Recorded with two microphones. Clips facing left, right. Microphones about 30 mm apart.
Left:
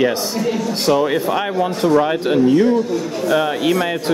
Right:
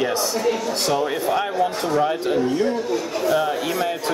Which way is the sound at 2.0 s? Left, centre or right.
Left.